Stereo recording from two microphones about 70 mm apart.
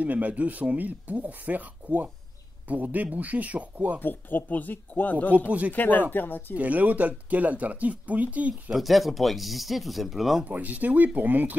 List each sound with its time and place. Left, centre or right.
0.0 s speech: right
4.0 s speech: left
5.3 s speech: right
5.7 s speech: left
6.5 s speech: right
8.7 s speech: centre
10.4 s speech: right